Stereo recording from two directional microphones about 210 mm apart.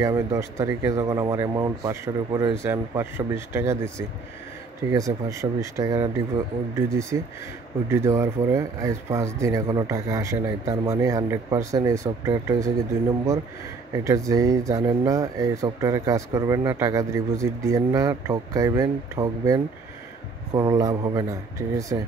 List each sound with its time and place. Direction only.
0.0 s speech: 15° right (ahead or behind)
4.9 s speech: 15° right (ahead or behind)
13.9 s speech: 15° right (ahead or behind)